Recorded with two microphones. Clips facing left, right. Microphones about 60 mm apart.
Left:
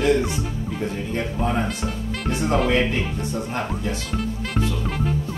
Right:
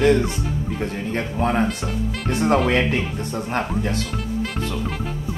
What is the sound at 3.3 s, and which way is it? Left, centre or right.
Speech, right.